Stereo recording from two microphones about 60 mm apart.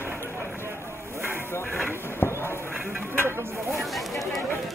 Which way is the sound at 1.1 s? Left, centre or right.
Right.